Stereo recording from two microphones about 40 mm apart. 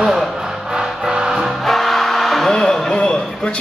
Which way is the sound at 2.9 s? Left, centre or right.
Left.